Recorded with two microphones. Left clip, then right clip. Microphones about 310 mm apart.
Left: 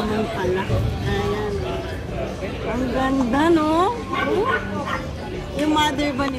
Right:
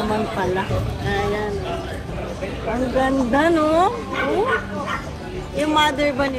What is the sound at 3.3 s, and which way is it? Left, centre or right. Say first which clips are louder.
Speech: left 1 dB; centre.